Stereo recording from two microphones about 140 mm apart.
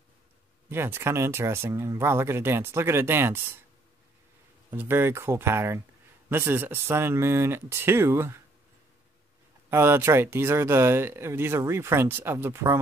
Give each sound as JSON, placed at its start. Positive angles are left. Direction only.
{"t": 0.7, "sound": "speech", "side_deg": -15}
{"t": 4.7, "sound": "speech", "side_deg": -15}
{"t": 9.7, "sound": "speech", "side_deg": -15}